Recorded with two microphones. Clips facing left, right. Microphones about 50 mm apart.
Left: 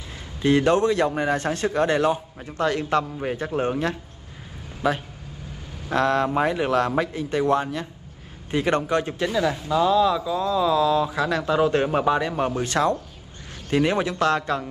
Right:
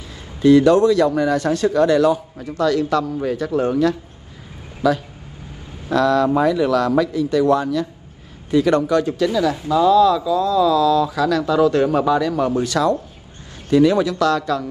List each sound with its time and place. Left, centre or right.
0.4 s a man's voice: left